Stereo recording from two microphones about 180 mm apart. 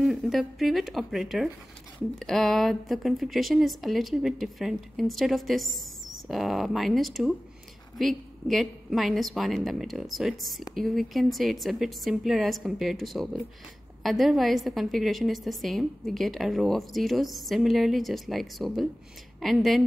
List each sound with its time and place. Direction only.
0.0 s speech: centre (ahead or behind)